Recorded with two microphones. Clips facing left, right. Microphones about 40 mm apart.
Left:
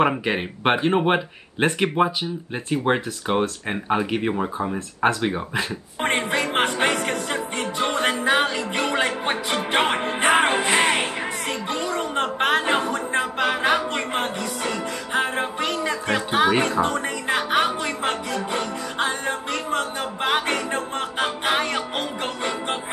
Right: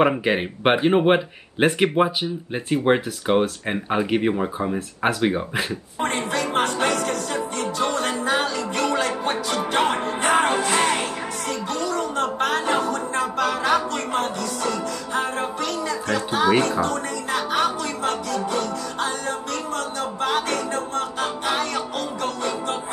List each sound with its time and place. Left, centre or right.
0.0 s speech: centre
5.9 s music: left